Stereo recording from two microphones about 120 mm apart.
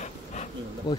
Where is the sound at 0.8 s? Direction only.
35° left (ahead or behind).